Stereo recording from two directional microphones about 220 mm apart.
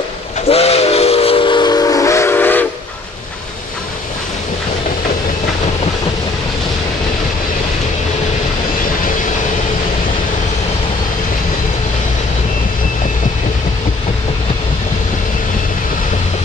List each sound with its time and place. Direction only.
0.5 s steam whistle: 25° left (ahead or behind); by 2.6 s 10° left (ahead or behind)